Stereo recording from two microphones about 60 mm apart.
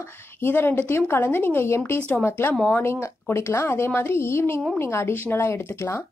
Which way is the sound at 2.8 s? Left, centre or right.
Left.